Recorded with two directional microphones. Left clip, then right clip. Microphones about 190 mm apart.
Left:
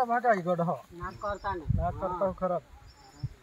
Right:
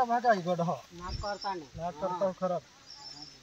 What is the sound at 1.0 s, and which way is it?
Speech, 35° right (ahead or behind).